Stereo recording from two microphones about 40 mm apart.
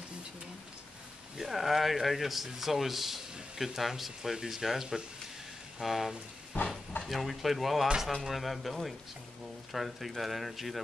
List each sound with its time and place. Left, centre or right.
1.4 s speech: centre
6.5 s speech: left
7.1 s speech: centre